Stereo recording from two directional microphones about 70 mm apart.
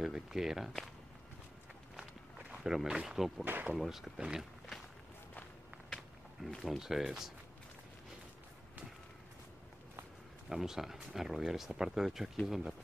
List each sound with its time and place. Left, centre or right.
0.0 s speech: centre
2.5 s speech: centre
3.4 s speech: right
3.7 s speech: centre
5.9 s speech: centre
10.5 s speech: centre